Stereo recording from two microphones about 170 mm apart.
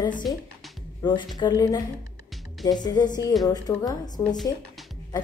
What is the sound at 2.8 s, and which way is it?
A woman's voice, 25° left (ahead or behind).